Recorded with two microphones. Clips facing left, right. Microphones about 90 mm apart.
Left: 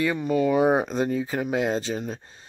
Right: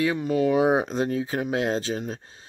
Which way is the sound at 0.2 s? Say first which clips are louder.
Left 2 dB; 15° right (ahead or behind).